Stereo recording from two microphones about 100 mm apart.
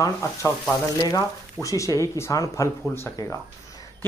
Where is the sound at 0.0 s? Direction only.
30° left (ahead or behind).